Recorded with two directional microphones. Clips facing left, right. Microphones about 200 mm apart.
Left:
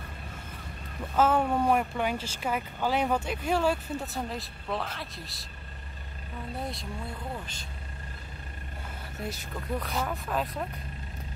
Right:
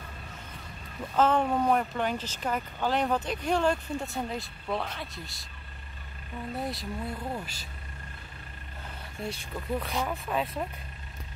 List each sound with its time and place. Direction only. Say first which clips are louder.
1.1 s speech: even; 5° left (ahead or behind)
6.6 s speech: right 3 dB; centre (ahead or behind)
9.2 s speech: right 1 dB; 5° left (ahead or behind)